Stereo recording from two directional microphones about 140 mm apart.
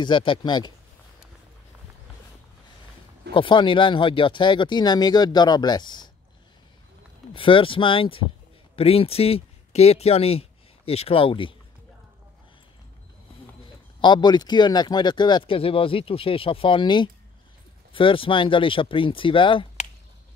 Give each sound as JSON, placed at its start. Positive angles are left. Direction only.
{"t": 0.0, "sound": "speech", "side_deg": 35}
{"t": 3.3, "sound": "speech", "side_deg": 35}
{"t": 7.3, "sound": "speech", "side_deg": 40}
{"t": 14.0, "sound": "speech", "side_deg": 30}